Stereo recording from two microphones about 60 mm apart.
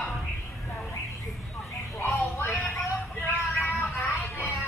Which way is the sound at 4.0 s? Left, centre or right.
Left.